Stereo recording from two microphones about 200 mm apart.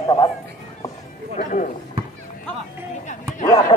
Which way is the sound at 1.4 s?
40° left (ahead or behind).